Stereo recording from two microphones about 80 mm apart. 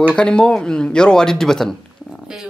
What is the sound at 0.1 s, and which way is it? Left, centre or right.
Speech, centre.